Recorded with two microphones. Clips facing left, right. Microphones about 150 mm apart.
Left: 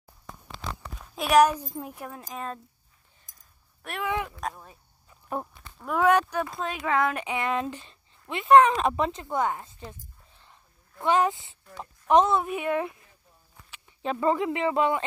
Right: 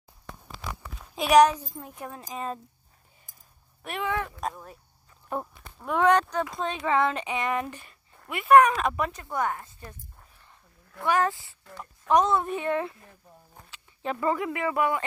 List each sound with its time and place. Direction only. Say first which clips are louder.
1.1 s a woman's voice: right 1 dB; centre (ahead or behind)
1.5 s speech: left 3 dB; 15° left (ahead or behind)
2.0 s speech: right 2 dB; centre (ahead or behind)
3.8 s speech: even; centre (ahead or behind); by 9.9 s 20° left (ahead or behind)
11.0 s speech: left 2 dB; 20° left (ahead or behind)